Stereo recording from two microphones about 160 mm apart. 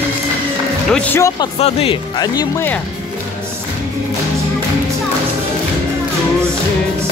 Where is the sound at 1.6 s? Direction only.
35° left (ahead or behind).